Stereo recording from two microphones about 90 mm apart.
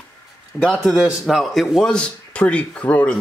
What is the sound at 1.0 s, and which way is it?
Speech, 5° right (ahead or behind).